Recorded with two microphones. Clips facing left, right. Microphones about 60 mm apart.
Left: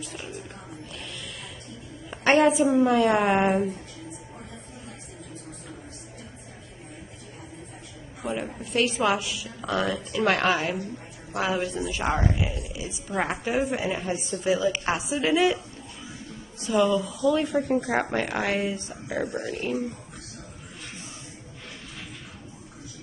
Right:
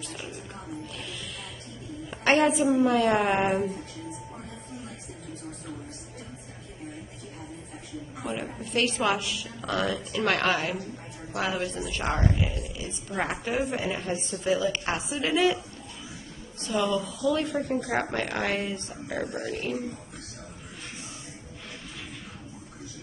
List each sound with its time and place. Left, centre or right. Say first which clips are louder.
0.0 s a woman's voice: left 1 dB; centre
2.0 s a woman's voice: left 3 dB; centre
8.2 s a woman's voice: left 3 dB; centre
17.7 s speech: left 2 dB; centre
18.1 s a woman's voice: left 2 dB; centre